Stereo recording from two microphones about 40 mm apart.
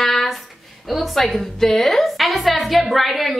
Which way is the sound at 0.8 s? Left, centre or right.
Centre.